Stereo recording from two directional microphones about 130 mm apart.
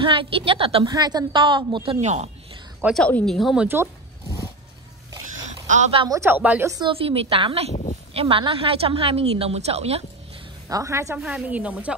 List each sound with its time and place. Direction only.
0.0 s a woman's voice: 40° right (ahead or behind)
0.8 s a woman's voice: 30° right (ahead or behind)
2.0 s speech: 60° right (ahead or behind)
2.9 s a woman's voice: 10° left (ahead or behind)
3.6 s a sound: 20° right (ahead or behind)
5.7 s speech: 65° right (ahead or behind)
6.0 s speech: 20° right (ahead or behind)
6.6 s speech: 25° right (ahead or behind)
6.9 s a woman's voice: 45° right (ahead or behind)
10.7 s speech: 25° right (ahead or behind)
11.1 s speech: 5° right (ahead or behind)